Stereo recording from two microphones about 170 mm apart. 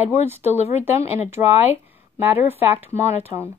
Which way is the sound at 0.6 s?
40° left (ahead or behind).